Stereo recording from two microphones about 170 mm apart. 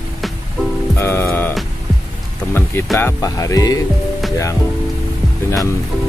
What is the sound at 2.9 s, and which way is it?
Speech, 15° left (ahead or behind).